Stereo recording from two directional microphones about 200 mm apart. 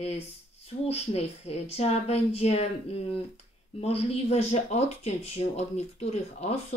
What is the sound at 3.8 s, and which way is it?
Speech, 30° left (ahead or behind).